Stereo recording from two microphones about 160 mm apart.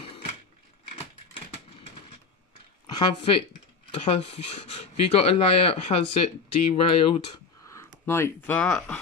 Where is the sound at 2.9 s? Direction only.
30° left (ahead or behind).